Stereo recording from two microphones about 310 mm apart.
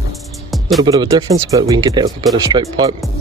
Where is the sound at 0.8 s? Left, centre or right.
Centre.